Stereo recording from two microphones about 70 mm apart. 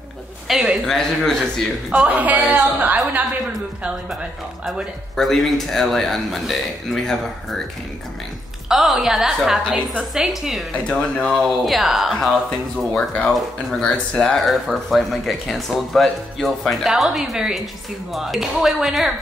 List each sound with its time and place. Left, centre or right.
0.5 s a man's voice: centre
0.8 s speech: centre
1.9 s a woman's voice: right
5.1 s speech: centre
8.6 s speech: centre
10.8 s speech: centre
11.3 s speech: centre
12.9 s speech: centre
13.3 s speech: centre